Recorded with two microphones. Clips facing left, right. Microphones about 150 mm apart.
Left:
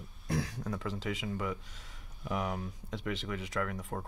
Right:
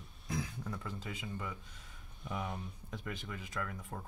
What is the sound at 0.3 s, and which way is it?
Speech, 85° left.